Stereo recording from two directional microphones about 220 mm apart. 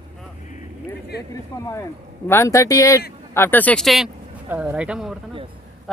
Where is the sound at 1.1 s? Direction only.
50° left (ahead or behind).